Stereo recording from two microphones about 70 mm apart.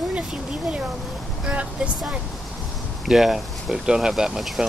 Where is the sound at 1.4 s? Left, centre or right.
Centre.